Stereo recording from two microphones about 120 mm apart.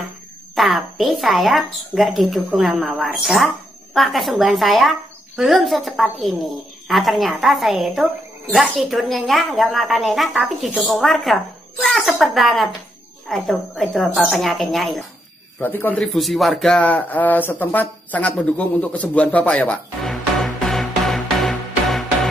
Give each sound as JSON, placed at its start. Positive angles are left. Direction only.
{"t": 0.6, "sound": "a woman's voice", "side_deg": 0}
{"t": 15.6, "sound": "a man's voice", "side_deg": 15}
{"t": 16.0, "sound": "speech", "side_deg": 0}